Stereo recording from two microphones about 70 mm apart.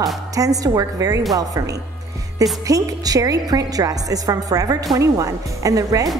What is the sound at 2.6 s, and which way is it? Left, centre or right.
A woman's voice, right.